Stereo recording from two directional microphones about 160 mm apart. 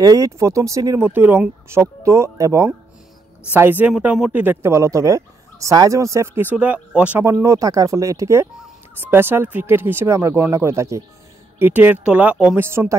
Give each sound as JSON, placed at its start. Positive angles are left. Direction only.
{"t": 0.0, "sound": "speech", "side_deg": -20}
{"t": 7.2, "sound": "speech", "side_deg": -20}